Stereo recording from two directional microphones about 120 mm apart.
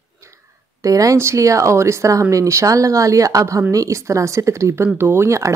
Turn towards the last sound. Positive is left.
turn(degrees=-25)  # may be behind; listen again after turning